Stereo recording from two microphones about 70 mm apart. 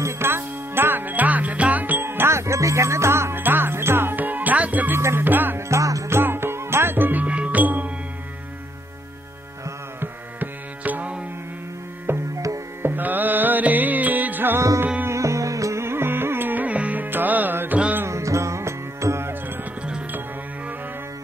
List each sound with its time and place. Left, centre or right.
0.0 s music: right
2.0 s music: right
4.9 s music: right
5.7 s music: right
6.0 s music: right
9.9 s music: right
12.1 s music: right
15.0 s music: right
18.0 s music: right